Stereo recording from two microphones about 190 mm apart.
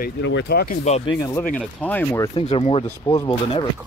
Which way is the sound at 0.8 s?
35° left (ahead or behind).